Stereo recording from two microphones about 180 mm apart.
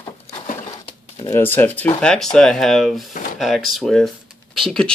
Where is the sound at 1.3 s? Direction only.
10° left (ahead or behind).